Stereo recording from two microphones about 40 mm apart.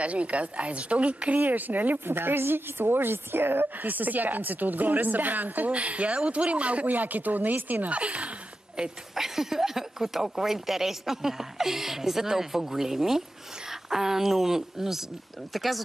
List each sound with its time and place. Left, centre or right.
0.0 s speech: right
1.4 s a woman's voice: right
2.0 s a woman's voice: right
5.7 s speech: right
8.8 s speech: centre